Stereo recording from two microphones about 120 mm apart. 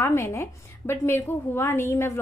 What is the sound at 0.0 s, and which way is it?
A woman's voice, 20° left (ahead or behind).